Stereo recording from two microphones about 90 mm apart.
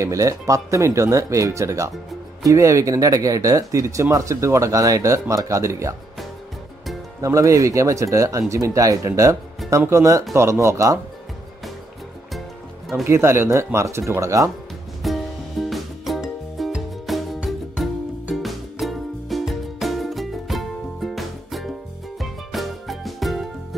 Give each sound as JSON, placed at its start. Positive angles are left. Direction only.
{"t": 0.0, "sound": "speech", "side_deg": -35}
{"t": 7.2, "sound": "speech", "side_deg": -35}
{"t": 13.1, "sound": "speech", "side_deg": -30}
{"t": 15.0, "sound": "music", "side_deg": 0}